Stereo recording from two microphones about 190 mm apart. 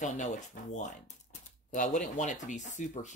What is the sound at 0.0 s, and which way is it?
Speech, 40° left (ahead or behind).